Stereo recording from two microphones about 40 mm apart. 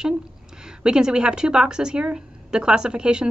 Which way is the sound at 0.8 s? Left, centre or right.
Centre.